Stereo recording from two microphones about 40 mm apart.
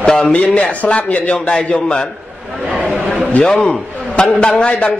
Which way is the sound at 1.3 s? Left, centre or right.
Left.